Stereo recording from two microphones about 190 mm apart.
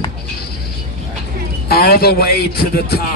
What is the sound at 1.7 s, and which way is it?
Speech, 55° left (ahead or behind).